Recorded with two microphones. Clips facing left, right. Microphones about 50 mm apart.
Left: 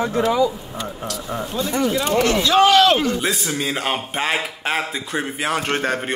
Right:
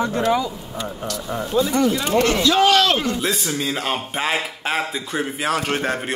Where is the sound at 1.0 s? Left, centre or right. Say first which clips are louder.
Right 1 dB; centre.